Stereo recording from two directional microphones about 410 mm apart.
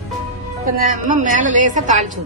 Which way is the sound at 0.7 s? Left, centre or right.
Centre.